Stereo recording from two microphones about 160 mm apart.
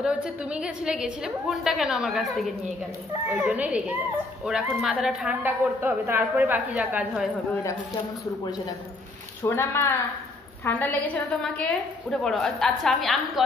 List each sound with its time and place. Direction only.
0.0 s a woman's voice: 5° right (ahead or behind)
3.3 s a woman's voice: 5° right (ahead or behind)
9.4 s a woman's voice: 15° left (ahead or behind); by 13.4 s centre (ahead or behind)